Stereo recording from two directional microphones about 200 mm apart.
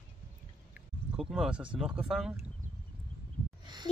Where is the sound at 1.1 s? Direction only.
5° right (ahead or behind).